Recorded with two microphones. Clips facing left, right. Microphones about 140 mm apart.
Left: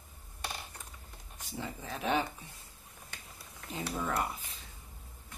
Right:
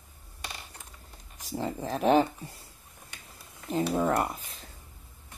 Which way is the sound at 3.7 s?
40° right (ahead or behind).